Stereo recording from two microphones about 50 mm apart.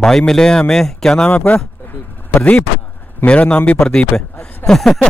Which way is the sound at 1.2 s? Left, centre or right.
Left.